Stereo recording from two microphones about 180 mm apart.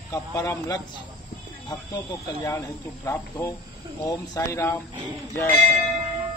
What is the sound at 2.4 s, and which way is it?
Speech, 15° left (ahead or behind).